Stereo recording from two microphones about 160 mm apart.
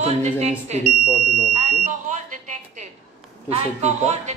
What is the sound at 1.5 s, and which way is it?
Smoke detector, 50° right (ahead or behind).